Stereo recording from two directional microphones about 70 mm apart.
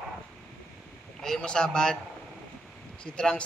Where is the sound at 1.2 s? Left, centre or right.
Centre.